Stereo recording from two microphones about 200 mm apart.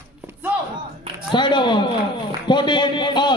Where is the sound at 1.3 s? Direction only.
25° left (ahead or behind).